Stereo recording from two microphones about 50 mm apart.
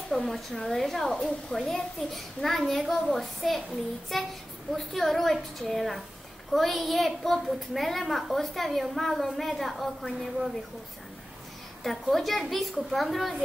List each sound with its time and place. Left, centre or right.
0.1 s a child's voice: centre
11.8 s a child's voice: centre